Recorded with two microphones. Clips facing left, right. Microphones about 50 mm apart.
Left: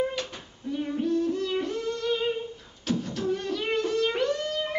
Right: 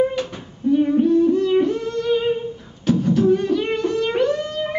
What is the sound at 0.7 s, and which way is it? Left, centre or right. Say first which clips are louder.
Music: right 11 dB; centre.